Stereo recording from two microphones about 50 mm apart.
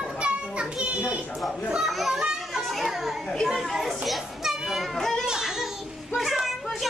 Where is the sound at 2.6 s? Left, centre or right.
Centre.